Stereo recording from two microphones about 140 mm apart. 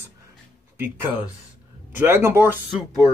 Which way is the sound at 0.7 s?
15° right (ahead or behind).